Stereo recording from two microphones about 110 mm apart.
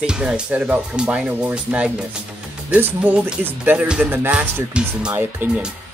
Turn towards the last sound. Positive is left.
turn(degrees=-15)  # may be behind; listen again after turning